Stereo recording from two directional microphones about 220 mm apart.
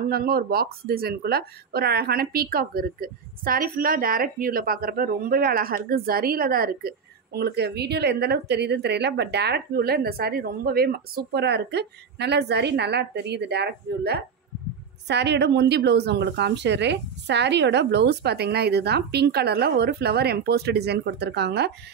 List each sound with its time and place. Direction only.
0.1 s a woman's voice: 45° right (ahead or behind)